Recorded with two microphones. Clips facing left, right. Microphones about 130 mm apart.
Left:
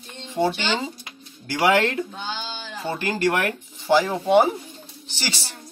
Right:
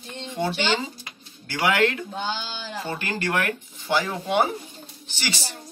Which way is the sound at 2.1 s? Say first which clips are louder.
Right 2 dB; 40° right (ahead or behind).